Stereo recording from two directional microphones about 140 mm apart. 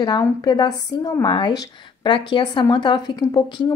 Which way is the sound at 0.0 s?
30° left (ahead or behind).